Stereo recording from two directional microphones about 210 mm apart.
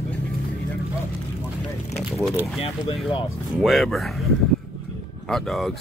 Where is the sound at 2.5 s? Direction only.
25° left (ahead or behind).